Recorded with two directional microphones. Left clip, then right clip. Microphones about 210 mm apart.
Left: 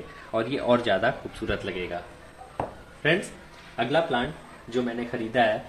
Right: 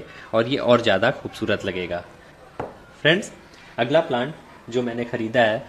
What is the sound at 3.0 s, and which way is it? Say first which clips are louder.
Speech: right 5 dB; 55° right (ahead or behind).